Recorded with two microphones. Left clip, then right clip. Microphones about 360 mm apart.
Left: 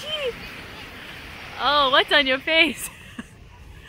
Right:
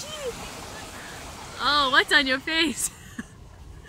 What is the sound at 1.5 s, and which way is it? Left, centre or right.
Speech, centre.